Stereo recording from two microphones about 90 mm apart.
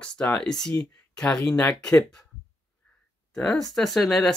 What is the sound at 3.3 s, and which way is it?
Speech, 5° left (ahead or behind).